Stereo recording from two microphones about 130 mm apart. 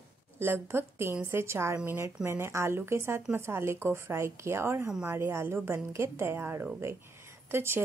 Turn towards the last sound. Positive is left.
turn(degrees=-15)  # may be behind; listen again after turning